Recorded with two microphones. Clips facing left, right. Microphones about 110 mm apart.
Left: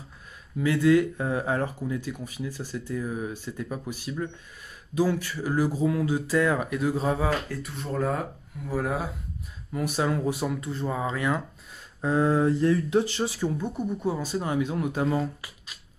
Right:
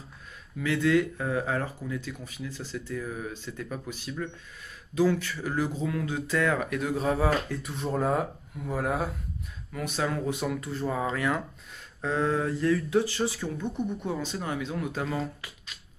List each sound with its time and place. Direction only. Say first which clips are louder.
0.6 s speech: left 4 dB; 15° left (ahead or behind)
9.7 s speech: left 4 dB; 15° left (ahead or behind)
10.6 s speech: even; centre (ahead or behind)
12.0 s speech: left 4 dB; 15° left (ahead or behind)
14.4 s speech: left 5 dB; 20° left (ahead or behind)